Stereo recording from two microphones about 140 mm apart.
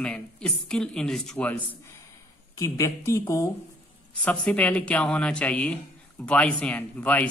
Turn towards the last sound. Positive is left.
turn(degrees=10)  # may be behind; listen again after turning